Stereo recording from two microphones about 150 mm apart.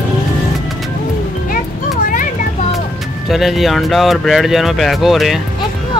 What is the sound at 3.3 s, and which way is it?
Speech, centre (ahead or behind).